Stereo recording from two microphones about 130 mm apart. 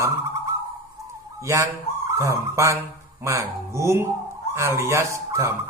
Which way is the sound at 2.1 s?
25° right (ahead or behind).